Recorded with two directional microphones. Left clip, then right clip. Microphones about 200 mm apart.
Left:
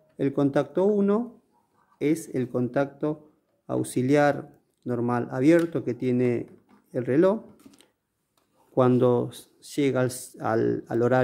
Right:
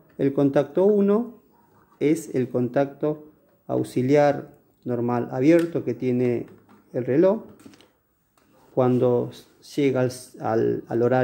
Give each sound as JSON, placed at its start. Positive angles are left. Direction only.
{"t": 0.2, "sound": "speech", "side_deg": 15}